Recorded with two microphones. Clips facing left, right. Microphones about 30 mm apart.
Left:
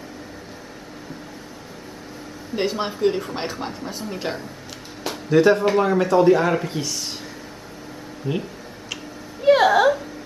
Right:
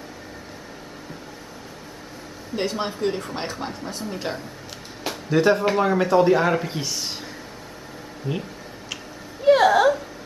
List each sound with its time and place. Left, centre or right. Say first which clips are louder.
2.5 s speech: left 2 dB; centre
8.3 s speech: left 3 dB; centre
9.4 s a sound: left 1 dB; centre